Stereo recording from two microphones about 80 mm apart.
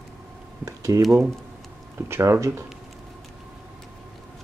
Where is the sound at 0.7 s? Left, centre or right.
Right.